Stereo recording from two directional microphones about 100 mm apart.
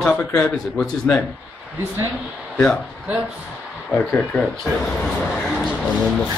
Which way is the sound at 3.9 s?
10° left (ahead or behind).